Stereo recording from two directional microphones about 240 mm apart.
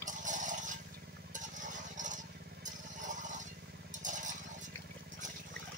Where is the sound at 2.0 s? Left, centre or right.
Right.